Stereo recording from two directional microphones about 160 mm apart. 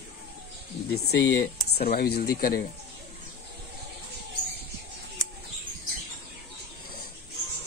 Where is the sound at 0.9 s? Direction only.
90° left.